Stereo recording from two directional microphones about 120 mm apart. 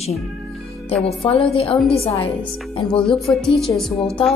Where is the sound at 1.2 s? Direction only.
50° left (ahead or behind).